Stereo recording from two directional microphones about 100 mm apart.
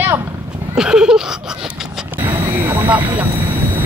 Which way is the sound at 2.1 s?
20° right (ahead or behind).